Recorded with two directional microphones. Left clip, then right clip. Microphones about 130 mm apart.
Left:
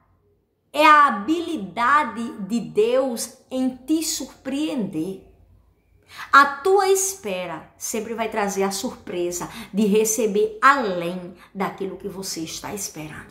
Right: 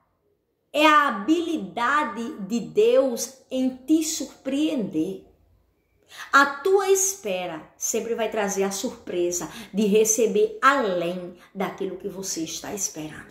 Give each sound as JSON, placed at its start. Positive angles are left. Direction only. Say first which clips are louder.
{"t": 0.7, "sound": "a woman's voice", "louder": "left 4 dB", "side_deg": 20}